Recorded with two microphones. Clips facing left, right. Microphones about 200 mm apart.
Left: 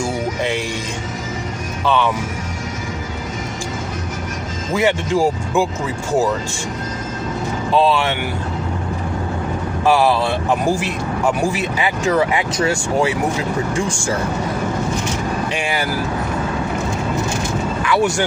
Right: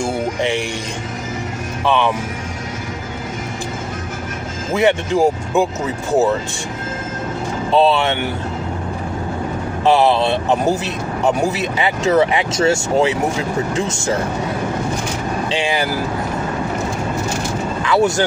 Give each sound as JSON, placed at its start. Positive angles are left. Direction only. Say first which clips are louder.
{"t": 0.4, "sound": "speech", "louder": "right 3 dB", "side_deg": -15}
{"t": 4.7, "sound": "speech", "louder": "right 2 dB", "side_deg": -20}
{"t": 7.7, "sound": "speech", "louder": "right 2 dB", "side_deg": -25}
{"t": 9.8, "sound": "speech", "louder": "right 2 dB", "side_deg": -20}
{"t": 15.4, "sound": "speech", "louder": "right 2 dB", "side_deg": -20}
{"t": 17.8, "sound": "speech", "louder": "right 3 dB", "side_deg": -25}